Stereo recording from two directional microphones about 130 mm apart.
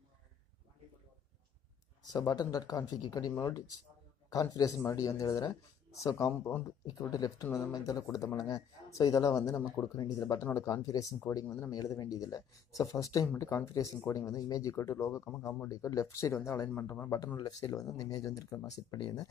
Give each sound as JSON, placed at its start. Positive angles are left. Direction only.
{"t": 2.0, "sound": "a man's voice", "side_deg": 30}
{"t": 11.4, "sound": "speech", "side_deg": 15}
{"t": 11.7, "sound": "a man's voice", "side_deg": 30}